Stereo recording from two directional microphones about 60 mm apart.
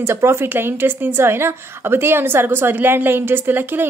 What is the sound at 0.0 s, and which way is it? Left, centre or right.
A woman's voice, right.